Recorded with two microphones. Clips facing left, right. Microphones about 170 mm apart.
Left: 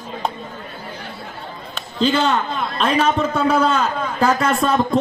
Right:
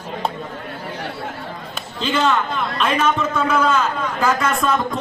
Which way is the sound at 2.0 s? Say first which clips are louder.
Left 2 dB; 35° left (ahead or behind).